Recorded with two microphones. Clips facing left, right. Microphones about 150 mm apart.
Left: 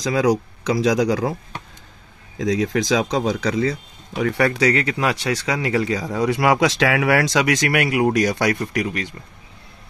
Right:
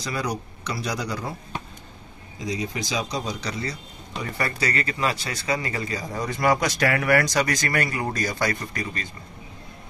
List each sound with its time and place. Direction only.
0.0 s speech: 90° left
2.3 s speech: 90° left
4.2 s speech: 75° left (ahead or behind)